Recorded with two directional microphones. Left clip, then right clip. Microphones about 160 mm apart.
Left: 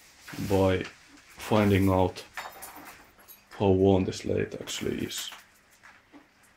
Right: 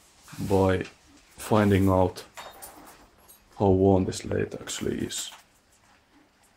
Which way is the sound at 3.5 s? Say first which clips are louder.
Right 1 dB; 15° right (ahead or behind).